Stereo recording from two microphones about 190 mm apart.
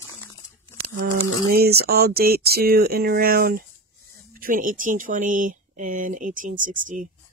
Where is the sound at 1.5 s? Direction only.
55° right (ahead or behind).